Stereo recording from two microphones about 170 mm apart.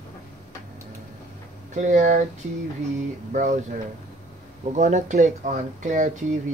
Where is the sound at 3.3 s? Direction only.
50° right (ahead or behind).